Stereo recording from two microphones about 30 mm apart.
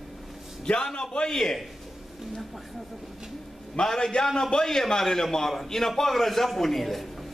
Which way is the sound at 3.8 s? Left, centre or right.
Left.